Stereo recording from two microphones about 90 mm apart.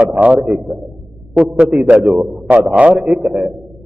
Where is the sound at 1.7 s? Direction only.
15° right (ahead or behind).